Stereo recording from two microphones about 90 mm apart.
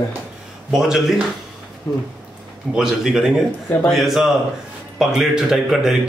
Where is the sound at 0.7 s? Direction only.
5° right (ahead or behind).